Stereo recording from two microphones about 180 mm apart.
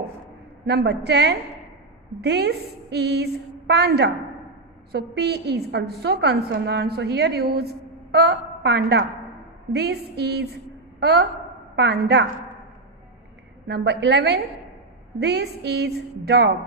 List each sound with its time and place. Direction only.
0.7 s a woman's voice: 65° right (ahead or behind)
9.7 s a sound: 65° right (ahead or behind)
11.0 s a woman's voice: 65° right (ahead or behind)
13.7 s a woman's voice: 70° right (ahead or behind)